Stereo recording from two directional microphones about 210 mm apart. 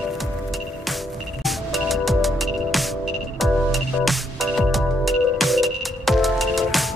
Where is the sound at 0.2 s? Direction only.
Centre (ahead or behind).